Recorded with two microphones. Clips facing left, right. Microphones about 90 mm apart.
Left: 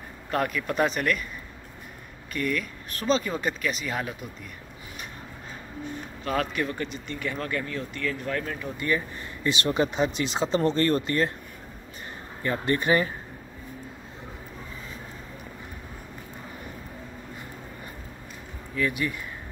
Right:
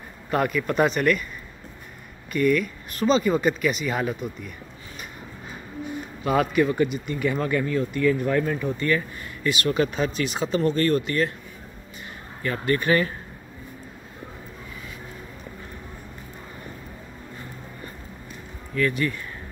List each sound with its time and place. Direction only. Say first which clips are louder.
0.3 s speech: right 4 dB; centre (ahead or behind)
2.3 s speech: right 8 dB; centre (ahead or behind)
5.9 s speech: right 5 dB; 5° right (ahead or behind)
8.7 s speech: even; 15° left (ahead or behind)
9.4 s speech: right 2 dB; 30° left (ahead or behind)
12.4 s speech: right 1 dB; 25° left (ahead or behind)
18.8 s speech: right 4 dB; 10° left (ahead or behind)